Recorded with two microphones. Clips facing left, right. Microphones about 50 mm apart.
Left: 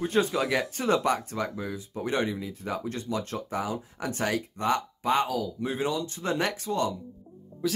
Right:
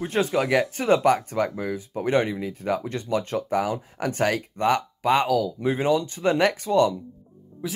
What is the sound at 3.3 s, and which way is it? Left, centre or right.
Speech, right.